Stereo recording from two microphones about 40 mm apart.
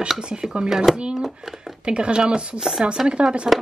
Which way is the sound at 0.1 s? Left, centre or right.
Centre.